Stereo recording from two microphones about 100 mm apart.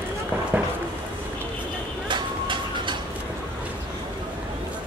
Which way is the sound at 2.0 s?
50° right (ahead or behind).